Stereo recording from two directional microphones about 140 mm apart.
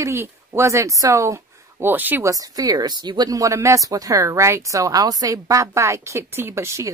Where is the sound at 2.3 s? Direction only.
25° right (ahead or behind).